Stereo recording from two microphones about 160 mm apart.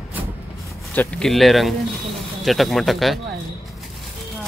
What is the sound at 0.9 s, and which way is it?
Speech, 5° left (ahead or behind).